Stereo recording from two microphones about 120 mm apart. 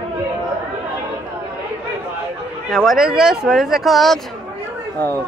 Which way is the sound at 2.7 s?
Centre (ahead or behind).